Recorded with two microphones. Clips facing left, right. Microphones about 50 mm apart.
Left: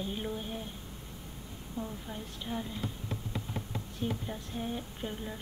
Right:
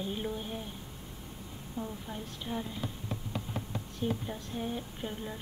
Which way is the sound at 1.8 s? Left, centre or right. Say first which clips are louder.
Right 1 dB; centre.